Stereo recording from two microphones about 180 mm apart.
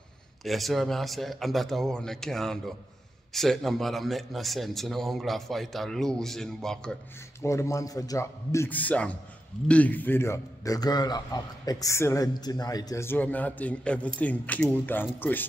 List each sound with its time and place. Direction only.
0.4 s a man's voice: centre (ahead or behind)
7.4 s a man's voice: 15° left (ahead or behind)